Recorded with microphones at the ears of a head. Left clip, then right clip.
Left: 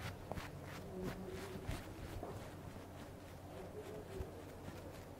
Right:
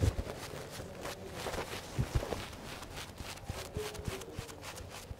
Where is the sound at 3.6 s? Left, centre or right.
Right.